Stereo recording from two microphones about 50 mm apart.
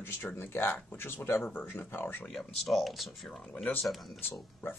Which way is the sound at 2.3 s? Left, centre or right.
Centre.